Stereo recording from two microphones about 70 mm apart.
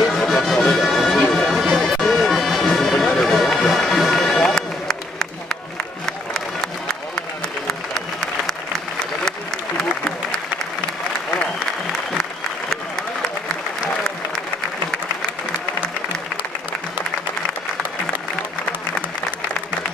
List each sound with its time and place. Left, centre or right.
0.0 s music: centre
3.1 s run: centre
7.6 s applause: centre